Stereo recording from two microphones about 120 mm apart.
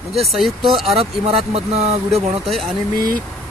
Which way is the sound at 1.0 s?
55° right (ahead or behind).